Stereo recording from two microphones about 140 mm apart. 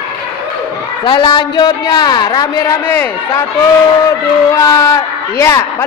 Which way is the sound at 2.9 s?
15° left (ahead or behind).